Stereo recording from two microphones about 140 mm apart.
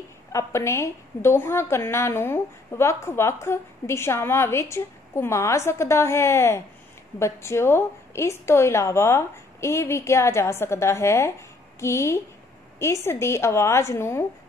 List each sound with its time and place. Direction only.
0.3 s a woman's voice: 20° left (ahead or behind)